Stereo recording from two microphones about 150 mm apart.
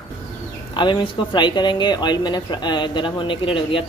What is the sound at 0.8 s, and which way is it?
Speech, 30° left (ahead or behind).